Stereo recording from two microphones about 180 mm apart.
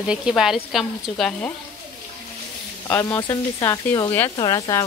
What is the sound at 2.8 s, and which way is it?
Speech, 20° left (ahead or behind).